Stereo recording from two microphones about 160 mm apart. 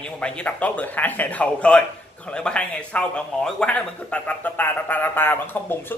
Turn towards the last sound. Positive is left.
turn(degrees=10)  # may be behind; listen again after turning